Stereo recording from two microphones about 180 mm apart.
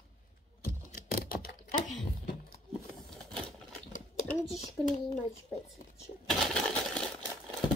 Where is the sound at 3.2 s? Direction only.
Centre (ahead or behind).